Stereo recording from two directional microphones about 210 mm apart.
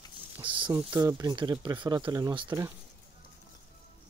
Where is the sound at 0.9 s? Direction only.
20° right (ahead or behind).